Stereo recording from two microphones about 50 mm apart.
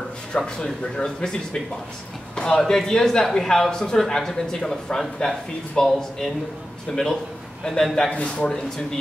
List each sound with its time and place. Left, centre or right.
0.3 s speech: centre
8.1 s speech: left